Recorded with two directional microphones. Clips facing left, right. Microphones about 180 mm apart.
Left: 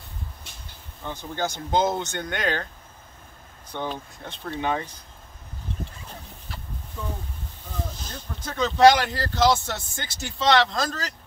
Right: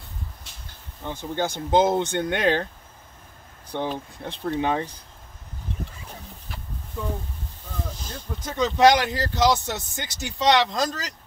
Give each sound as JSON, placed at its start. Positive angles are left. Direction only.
{"t": 1.0, "sound": "speech", "side_deg": -25}
{"t": 3.7, "sound": "speech", "side_deg": -30}
{"t": 8.0, "sound": "speech", "side_deg": -15}